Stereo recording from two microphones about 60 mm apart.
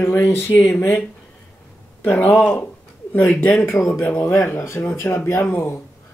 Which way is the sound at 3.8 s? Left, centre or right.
Left.